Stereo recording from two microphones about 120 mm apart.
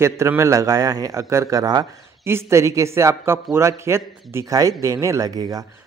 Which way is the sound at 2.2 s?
20° right (ahead or behind).